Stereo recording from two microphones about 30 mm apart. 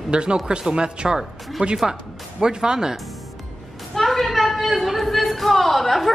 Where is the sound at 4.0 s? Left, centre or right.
Centre.